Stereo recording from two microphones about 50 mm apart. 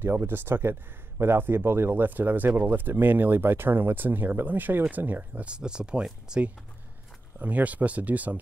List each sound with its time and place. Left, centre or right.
0.0 s speech: right
5.4 s speech: centre
7.3 s speech: right